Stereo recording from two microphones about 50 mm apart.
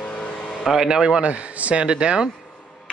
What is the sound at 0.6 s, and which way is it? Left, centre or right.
Speech, centre.